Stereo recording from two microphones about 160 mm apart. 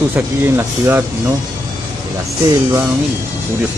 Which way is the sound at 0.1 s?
15° right (ahead or behind).